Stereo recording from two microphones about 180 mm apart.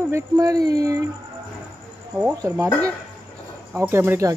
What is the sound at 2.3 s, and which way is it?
Speech, 15° right (ahead or behind).